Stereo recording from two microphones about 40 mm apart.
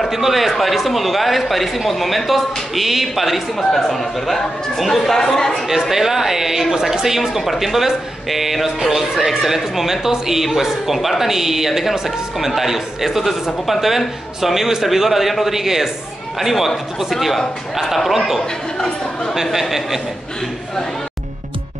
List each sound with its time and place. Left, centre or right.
0.1 s speech: centre
5.7 s a man's voice: centre
18.8 s speech: centre
19.3 s a man's voice: centre